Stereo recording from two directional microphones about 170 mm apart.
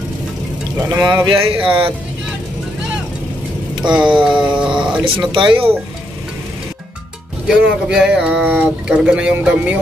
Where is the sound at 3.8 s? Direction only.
25° right (ahead or behind).